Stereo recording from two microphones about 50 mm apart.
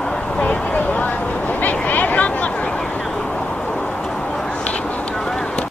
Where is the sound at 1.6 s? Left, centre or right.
Left.